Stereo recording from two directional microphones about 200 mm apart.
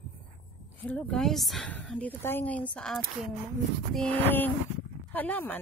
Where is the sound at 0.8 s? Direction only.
5° left (ahead or behind).